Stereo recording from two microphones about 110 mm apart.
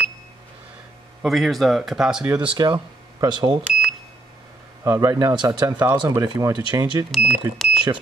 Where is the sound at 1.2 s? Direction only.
Centre (ahead or behind).